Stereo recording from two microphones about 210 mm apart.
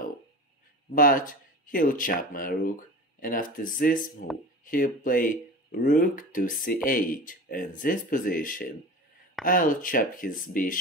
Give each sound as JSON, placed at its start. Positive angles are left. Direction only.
{"t": 0.9, "sound": "speech", "side_deg": 40}